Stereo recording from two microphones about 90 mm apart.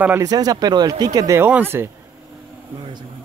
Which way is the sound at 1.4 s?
20° right (ahead or behind).